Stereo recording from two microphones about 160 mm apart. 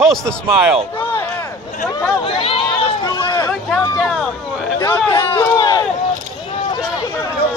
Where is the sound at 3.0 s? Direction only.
25° left (ahead or behind).